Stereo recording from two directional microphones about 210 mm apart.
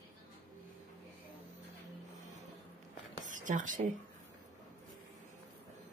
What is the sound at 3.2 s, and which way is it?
Speech, 35° right (ahead or behind).